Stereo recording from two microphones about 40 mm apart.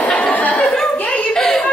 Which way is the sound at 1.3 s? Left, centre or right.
Centre.